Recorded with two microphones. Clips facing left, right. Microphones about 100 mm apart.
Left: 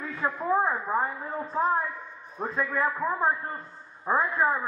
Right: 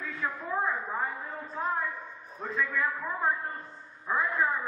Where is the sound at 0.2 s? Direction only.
35° left (ahead or behind).